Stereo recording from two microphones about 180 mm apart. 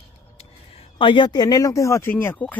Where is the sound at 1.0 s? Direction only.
25° left (ahead or behind); by 2.6 s 10° left (ahead or behind).